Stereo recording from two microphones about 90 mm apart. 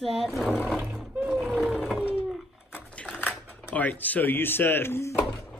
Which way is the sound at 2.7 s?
15° left (ahead or behind).